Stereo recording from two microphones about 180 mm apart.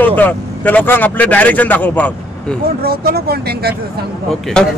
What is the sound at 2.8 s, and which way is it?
Speech, 60° right (ahead or behind).